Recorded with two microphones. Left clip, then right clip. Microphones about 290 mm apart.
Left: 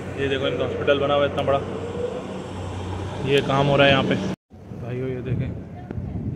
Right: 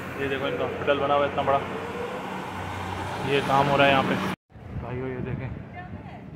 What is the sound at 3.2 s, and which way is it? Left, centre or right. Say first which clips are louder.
Speech: left 2 dB; centre.